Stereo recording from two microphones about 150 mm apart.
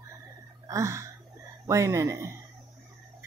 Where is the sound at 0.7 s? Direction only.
20° right (ahead or behind).